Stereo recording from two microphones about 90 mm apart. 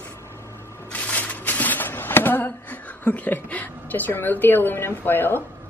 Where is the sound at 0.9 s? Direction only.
15° left (ahead or behind).